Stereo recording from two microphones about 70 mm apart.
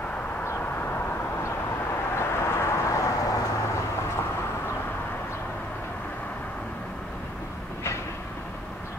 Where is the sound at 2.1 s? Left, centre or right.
Left.